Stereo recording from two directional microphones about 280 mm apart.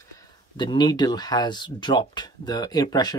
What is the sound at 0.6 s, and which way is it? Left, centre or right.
Speech, centre.